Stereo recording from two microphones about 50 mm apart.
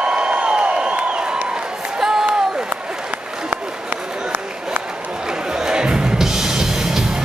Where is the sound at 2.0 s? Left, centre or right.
Centre.